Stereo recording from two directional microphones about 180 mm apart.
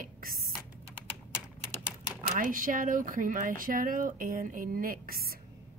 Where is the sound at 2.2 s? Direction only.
50° right (ahead or behind).